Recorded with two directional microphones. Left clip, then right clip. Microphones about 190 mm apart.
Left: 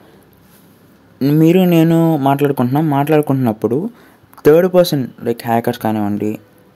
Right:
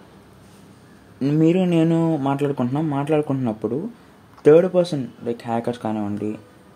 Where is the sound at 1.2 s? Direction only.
35° left (ahead or behind).